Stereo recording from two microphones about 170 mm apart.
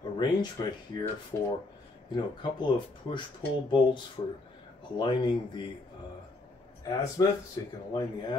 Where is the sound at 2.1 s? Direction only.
25° left (ahead or behind).